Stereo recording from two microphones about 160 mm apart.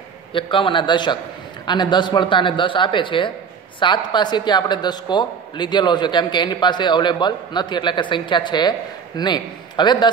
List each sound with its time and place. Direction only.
0.3 s a man's voice: 30° left (ahead or behind)